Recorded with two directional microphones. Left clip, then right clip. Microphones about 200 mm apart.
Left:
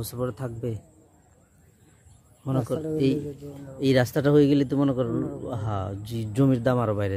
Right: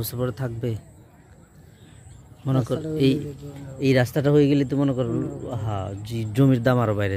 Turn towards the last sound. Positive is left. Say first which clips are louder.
# right 3 dB
turn(degrees=5)  # may be behind; listen again after turning